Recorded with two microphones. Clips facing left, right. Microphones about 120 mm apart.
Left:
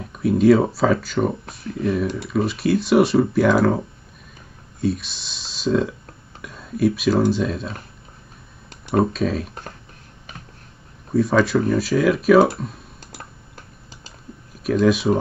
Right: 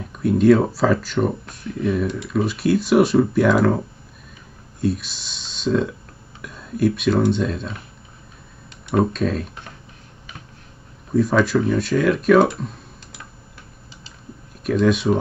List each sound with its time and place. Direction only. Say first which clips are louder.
0.0 s speech: even; centre (ahead or behind)
8.9 s speech: even; centre (ahead or behind)
11.1 s speech: even; centre (ahead or behind)
13.1 s typing: left 5 dB; 40° left (ahead or behind)
14.6 s speech: left 1 dB; centre (ahead or behind)